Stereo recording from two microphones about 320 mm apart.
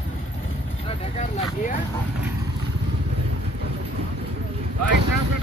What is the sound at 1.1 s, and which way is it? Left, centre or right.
Speech, left.